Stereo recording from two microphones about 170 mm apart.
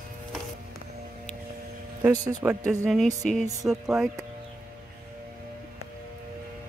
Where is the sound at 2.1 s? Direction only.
15° right (ahead or behind).